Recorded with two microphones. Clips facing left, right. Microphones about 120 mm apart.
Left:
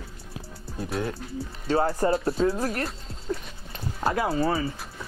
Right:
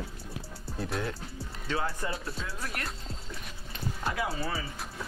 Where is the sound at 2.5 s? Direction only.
35° left (ahead or behind).